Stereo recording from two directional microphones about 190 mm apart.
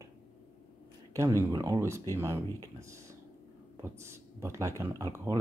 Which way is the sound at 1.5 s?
20° right (ahead or behind).